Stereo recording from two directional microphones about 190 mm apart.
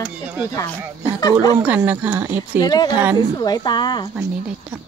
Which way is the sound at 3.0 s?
10° right (ahead or behind).